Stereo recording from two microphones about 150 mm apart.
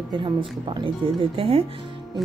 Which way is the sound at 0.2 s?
35° right (ahead or behind).